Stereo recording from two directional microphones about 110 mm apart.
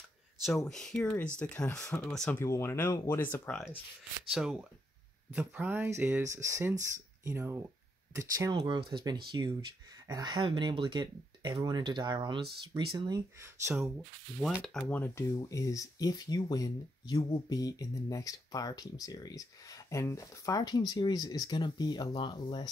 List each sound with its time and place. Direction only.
0.4 s speech: 5° left (ahead or behind)
2.3 s speech: 25° left (ahead or behind)
4.3 s speech: 5° right (ahead or behind)
5.4 s speech: 15° right (ahead or behind); by 13.2 s 45° right (ahead or behind)
13.7 s speech: 5° right (ahead or behind)
14.6 s speech: 10° left (ahead or behind)
15.3 s speech: 30° left (ahead or behind)
17.6 s speech: 35° left (ahead or behind)